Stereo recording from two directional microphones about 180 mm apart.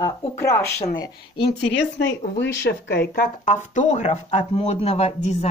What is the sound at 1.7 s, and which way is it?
Speech, 80° left.